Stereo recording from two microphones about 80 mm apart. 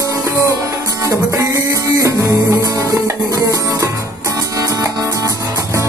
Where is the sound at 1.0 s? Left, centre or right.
Right.